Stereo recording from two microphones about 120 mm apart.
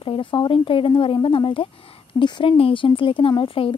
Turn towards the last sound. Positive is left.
turn(degrees=50)  # may be behind; listen again after turning